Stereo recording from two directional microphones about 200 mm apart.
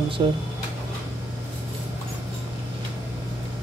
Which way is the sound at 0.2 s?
25° right (ahead or behind).